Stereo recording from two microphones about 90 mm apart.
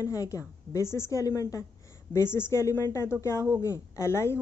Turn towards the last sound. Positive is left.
turn(degrees=30)  # may be behind; listen again after turning